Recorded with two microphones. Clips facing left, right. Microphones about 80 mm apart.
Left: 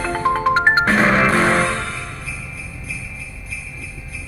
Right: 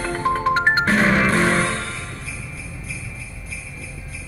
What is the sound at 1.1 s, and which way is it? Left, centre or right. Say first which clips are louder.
Music: left 2 dB; left.